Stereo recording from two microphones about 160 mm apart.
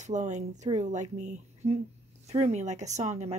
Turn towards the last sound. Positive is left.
turn(degrees=-45)  # may be behind; listen again after turning